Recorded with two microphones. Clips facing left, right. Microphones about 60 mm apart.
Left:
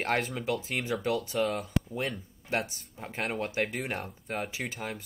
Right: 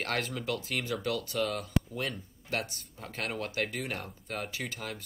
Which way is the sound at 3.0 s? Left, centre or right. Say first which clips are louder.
Left 3 dB; centre.